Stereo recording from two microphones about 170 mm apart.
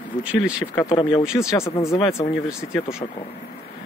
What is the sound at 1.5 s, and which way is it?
Speech, 15° left (ahead or behind).